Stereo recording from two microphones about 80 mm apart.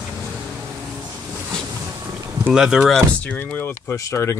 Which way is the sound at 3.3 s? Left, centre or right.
Left.